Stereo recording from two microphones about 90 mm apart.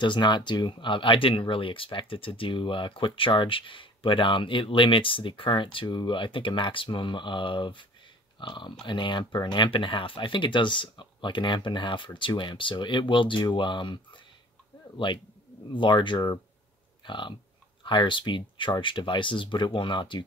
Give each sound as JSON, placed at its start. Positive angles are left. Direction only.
{"t": 0.0, "sound": "speech", "side_deg": 60}
{"t": 15.7, "sound": "speech", "side_deg": 65}